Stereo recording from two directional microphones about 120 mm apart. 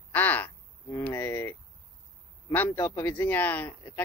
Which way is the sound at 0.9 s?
20° left (ahead or behind).